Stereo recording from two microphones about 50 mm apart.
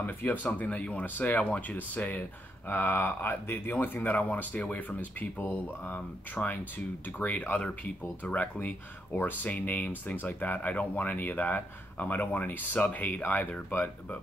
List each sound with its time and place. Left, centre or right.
0.0 s speech: left
1.0 s speech: left
2.7 s speech: left